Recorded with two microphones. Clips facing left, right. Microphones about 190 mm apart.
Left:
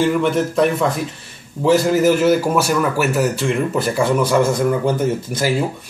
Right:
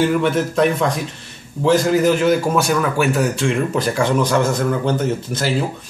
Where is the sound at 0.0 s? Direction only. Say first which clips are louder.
Even; centre (ahead or behind).